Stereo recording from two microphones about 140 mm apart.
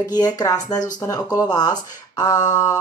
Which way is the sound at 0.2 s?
25° left (ahead or behind).